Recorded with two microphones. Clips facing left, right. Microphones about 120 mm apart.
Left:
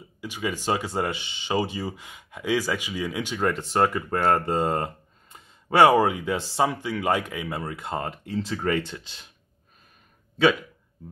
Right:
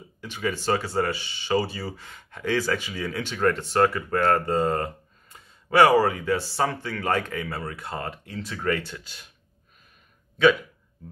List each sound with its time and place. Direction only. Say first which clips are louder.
0.2 s speech: right 1 dB; 10° left (ahead or behind)